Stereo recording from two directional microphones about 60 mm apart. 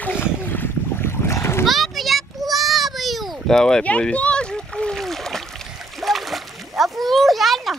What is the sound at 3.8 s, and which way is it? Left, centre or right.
Speech, left.